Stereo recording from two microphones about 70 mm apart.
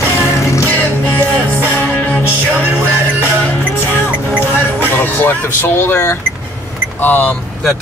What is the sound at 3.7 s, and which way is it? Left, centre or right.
Music, left.